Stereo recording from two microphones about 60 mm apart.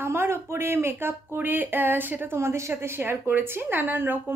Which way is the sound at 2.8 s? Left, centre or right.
Right.